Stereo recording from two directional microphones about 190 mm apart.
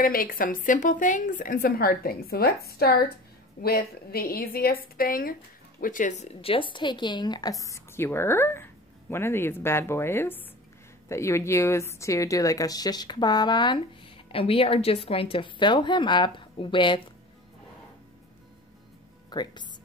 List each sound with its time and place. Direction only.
0.0 s a woman's voice: 50° left (ahead or behind); by 17.0 s 25° left (ahead or behind)
19.3 s a woman's voice: 20° left (ahead or behind)